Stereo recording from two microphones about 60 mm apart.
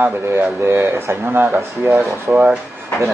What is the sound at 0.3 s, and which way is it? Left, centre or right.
Speech, right.